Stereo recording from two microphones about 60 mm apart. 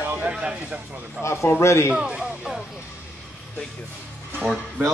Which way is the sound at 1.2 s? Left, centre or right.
Left.